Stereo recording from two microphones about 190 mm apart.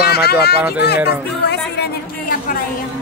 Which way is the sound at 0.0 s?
55° left (ahead or behind).